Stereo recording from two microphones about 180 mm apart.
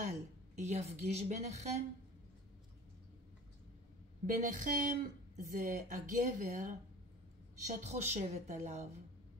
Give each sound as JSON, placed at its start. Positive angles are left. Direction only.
{"t": 0.6, "sound": "a woman's voice", "side_deg": -40}
{"t": 4.3, "sound": "a woman's voice", "side_deg": -45}